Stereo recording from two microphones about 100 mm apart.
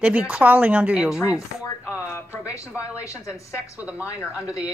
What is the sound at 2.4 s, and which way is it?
A woman's voice, 30° left (ahead or behind).